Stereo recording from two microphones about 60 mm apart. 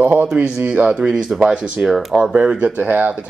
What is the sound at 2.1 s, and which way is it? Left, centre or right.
Speech, centre.